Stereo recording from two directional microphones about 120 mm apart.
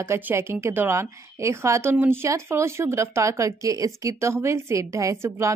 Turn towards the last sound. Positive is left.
turn(degrees=-25)  # may be behind; listen again after turning